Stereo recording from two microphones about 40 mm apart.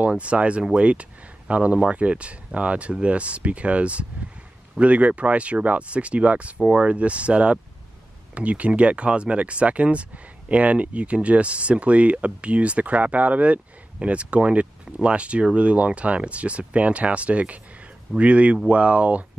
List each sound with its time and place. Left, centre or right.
0.2 s speech: right